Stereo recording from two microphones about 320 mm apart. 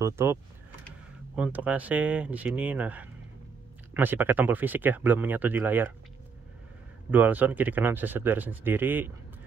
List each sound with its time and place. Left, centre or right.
0.0 s speech: centre
7.1 s speech: centre